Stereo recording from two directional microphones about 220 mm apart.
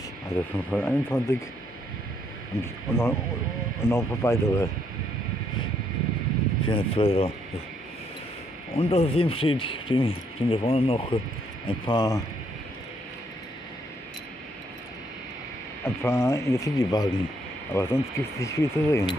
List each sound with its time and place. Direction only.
0.3 s speech: 10° left (ahead or behind)
2.6 s speech: 10° left (ahead or behind)
6.7 s speech: 25° left (ahead or behind)
8.7 s speech: 25° left (ahead or behind)
15.8 s speech: 10° left (ahead or behind)